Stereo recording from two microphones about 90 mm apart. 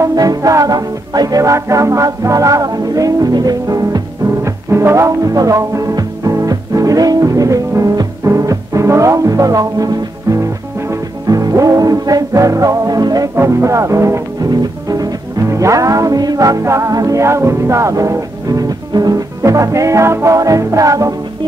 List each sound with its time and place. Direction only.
0.0 s music: 45° right (ahead or behind)
4.5 s music: 30° right (ahead or behind); by 13.3 s 45° right (ahead or behind)
13.4 s music: 30° right (ahead or behind)
14.5 s music: 45° right (ahead or behind)